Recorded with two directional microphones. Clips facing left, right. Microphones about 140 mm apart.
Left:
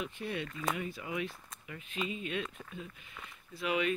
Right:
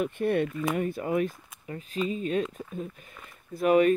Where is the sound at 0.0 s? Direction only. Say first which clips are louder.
Right 12 dB; 55° right (ahead or behind).